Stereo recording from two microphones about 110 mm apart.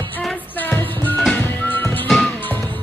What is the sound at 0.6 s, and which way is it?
Music, 20° left (ahead or behind).